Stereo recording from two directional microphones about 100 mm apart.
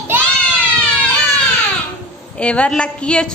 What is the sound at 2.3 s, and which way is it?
Speech, 10° left (ahead or behind).